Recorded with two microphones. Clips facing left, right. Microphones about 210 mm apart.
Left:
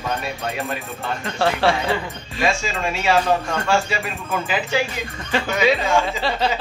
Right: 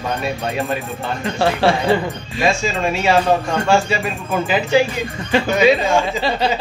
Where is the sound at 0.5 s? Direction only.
30° right (ahead or behind).